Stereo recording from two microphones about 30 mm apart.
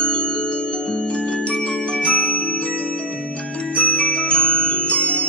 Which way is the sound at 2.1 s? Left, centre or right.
Left.